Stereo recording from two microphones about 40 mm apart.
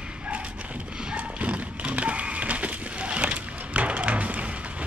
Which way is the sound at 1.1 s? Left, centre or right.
Right.